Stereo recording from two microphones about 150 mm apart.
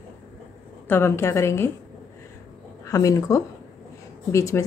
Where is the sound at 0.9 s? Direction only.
15° left (ahead or behind).